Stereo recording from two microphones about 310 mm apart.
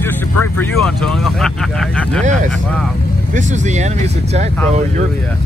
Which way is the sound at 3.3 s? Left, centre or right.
Right.